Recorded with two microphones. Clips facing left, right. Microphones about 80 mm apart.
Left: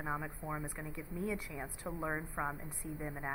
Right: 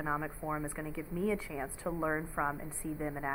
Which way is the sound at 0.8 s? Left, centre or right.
Left.